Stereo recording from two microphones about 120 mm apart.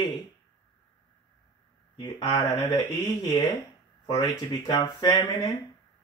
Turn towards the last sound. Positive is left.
turn(degrees=30)  # may be behind; listen again after turning